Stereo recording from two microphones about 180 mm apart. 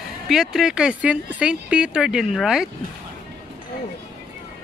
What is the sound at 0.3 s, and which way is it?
Speech, centre (ahead or behind).